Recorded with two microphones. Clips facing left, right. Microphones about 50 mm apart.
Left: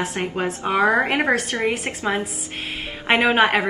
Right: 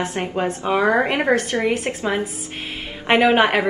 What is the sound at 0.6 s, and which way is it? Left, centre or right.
A woman's voice, left.